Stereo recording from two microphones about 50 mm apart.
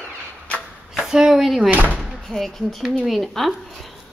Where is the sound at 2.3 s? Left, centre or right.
Centre.